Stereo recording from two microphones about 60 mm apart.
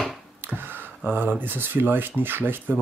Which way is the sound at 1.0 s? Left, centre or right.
Right.